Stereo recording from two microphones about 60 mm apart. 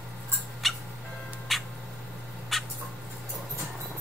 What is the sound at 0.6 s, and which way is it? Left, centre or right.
Squawk, centre.